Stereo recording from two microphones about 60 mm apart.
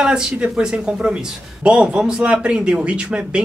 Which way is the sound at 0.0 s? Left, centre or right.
Centre.